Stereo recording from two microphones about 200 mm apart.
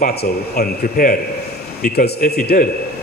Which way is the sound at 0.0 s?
50° left (ahead or behind).